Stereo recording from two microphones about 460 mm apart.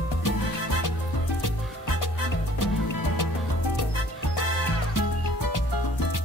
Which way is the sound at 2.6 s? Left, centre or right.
Left.